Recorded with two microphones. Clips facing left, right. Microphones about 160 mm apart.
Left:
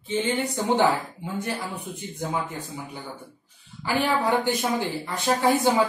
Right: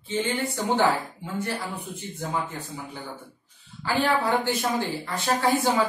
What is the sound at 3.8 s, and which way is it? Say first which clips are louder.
Speech: even; 15° left (ahead or behind).